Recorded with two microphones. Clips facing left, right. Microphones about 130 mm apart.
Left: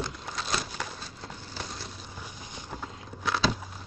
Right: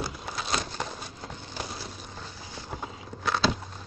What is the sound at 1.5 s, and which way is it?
Vehicle, 5° right (ahead or behind).